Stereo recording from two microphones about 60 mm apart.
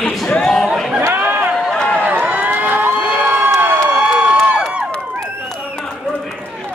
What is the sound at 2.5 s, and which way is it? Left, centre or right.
Crowd, right.